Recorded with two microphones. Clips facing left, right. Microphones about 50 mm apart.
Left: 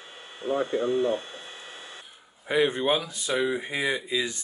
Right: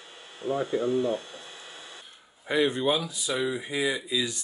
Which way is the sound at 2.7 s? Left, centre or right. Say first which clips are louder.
Left 1 dB; left.